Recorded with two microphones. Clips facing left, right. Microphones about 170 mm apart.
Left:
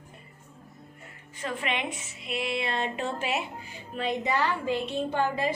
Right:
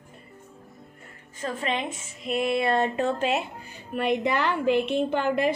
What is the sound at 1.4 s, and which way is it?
A woman's voice, 35° right (ahead or behind).